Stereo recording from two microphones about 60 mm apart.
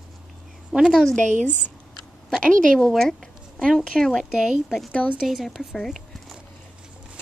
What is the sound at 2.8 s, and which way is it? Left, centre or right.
Speech, centre.